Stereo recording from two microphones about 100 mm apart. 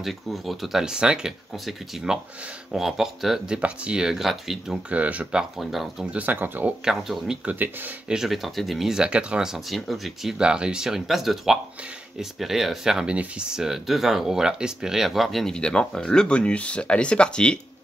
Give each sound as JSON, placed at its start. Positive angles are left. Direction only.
{"t": 0.0, "sound": "speech", "side_deg": 0}
{"t": 4.8, "sound": "speech", "side_deg": -15}
{"t": 6.1, "sound": "speech", "side_deg": -15}
{"t": 6.8, "sound": "speech", "side_deg": -5}
{"t": 7.5, "sound": "speech", "side_deg": -20}
{"t": 8.1, "sound": "speech", "side_deg": 0}